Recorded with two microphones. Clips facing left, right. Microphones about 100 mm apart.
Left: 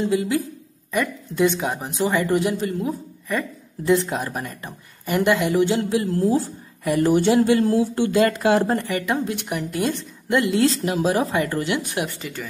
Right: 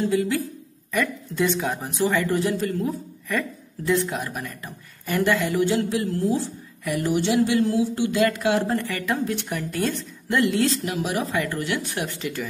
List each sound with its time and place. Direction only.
0.0 s a woman's voice: 20° left (ahead or behind)
3.9 s a woman's voice: 25° left (ahead or behind)
5.0 s a woman's voice: 20° left (ahead or behind); by 8.7 s 40° left (ahead or behind)
8.7 s a woman's voice: 20° left (ahead or behind)
12.2 s speech: centre (ahead or behind)